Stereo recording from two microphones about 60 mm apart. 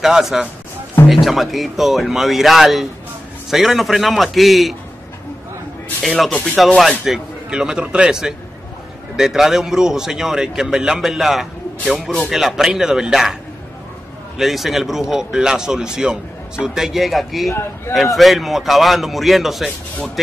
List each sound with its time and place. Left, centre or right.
0.0 s speech: centre
6.0 s speech: centre
7.1 s speech: centre
14.4 s speech: centre
17.5 s a man's voice: left
17.9 s speech: centre